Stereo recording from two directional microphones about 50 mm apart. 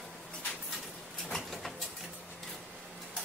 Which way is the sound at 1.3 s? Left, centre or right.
Centre.